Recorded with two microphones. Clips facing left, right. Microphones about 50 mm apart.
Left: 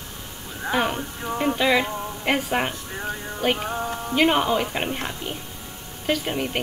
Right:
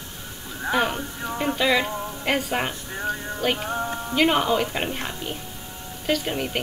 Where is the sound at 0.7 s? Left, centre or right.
Centre.